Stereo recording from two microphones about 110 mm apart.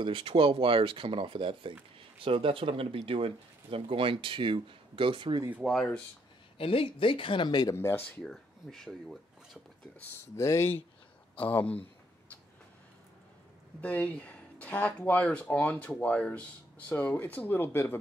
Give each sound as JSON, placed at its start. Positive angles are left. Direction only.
{"t": 0.0, "sound": "speech", "side_deg": -55}
{"t": 5.6, "sound": "speech", "side_deg": 0}
{"t": 6.6, "sound": "speech", "side_deg": 55}
{"t": 7.7, "sound": "speech", "side_deg": 20}
{"t": 8.2, "sound": "speech", "side_deg": 5}
{"t": 9.9, "sound": "speech", "side_deg": 20}
{"t": 11.3, "sound": "speech", "side_deg": 15}
{"t": 13.7, "sound": "speech", "side_deg": 15}